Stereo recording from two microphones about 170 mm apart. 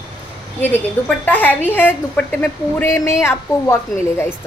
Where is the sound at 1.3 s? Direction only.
10° left (ahead or behind).